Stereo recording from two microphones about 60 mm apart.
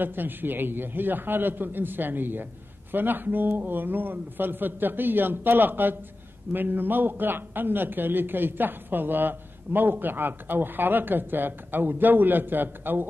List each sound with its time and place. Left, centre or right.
0.0 s a man's voice: right